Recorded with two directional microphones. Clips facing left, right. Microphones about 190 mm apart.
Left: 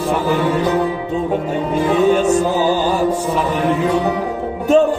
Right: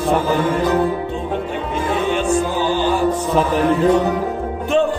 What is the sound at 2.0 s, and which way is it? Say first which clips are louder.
Music: left 6 dB; 40° left (ahead or behind).